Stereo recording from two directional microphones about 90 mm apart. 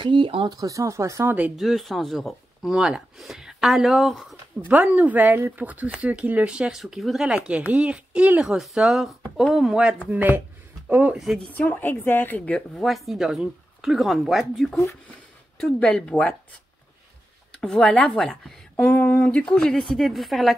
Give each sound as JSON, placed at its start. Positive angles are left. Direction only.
{"t": 0.0, "sound": "speech", "side_deg": -70}
{"t": 0.5, "sound": "speech", "side_deg": -40}
{"t": 1.6, "sound": "speech", "side_deg": 0}
{"t": 4.6, "sound": "speech", "side_deg": -20}
{"t": 10.0, "sound": "speech", "side_deg": -20}
{"t": 11.5, "sound": "speech", "side_deg": 20}
{"t": 12.8, "sound": "speech", "side_deg": 0}
{"t": 17.6, "sound": "speech", "side_deg": 10}
{"t": 18.9, "sound": "speech", "side_deg": 25}